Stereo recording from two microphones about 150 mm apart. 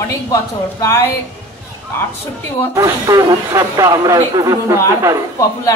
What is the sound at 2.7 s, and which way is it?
A man's voice, 20° right (ahead or behind).